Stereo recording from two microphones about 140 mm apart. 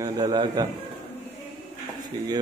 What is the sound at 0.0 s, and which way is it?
Speech, 30° right (ahead or behind).